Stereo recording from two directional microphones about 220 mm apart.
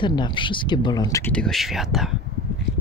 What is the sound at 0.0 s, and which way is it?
Speech, 20° left (ahead or behind).